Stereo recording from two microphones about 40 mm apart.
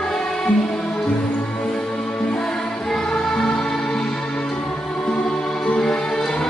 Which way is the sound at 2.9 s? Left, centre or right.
Centre.